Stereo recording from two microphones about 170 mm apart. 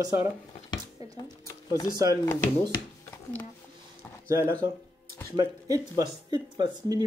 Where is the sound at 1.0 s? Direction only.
20° right (ahead or behind).